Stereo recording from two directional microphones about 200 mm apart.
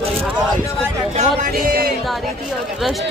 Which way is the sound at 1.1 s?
45° right (ahead or behind).